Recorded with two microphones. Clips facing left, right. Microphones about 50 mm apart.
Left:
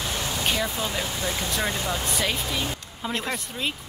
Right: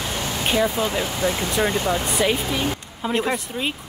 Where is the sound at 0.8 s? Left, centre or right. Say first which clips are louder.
Right 6 dB; right.